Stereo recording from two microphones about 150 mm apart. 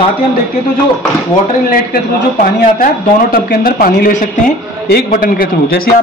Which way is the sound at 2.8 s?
70° left (ahead or behind).